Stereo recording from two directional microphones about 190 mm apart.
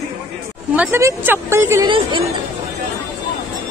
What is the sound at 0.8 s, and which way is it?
A woman's voice, 15° right (ahead or behind).